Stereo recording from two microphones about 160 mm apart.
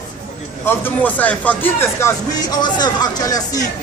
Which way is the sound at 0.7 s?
10° left (ahead or behind).